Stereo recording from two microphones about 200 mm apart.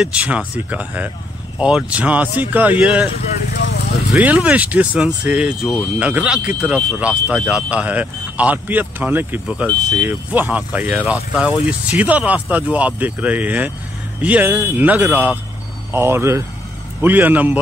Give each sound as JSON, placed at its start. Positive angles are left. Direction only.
{"t": 0.0, "sound": "speech", "side_deg": -5}
{"t": 3.5, "sound": "vehicle", "side_deg": 55}
{"t": 4.1, "sound": "speech", "side_deg": -5}